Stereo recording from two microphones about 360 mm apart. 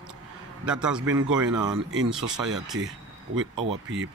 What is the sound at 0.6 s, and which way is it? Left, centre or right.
A man's voice, centre.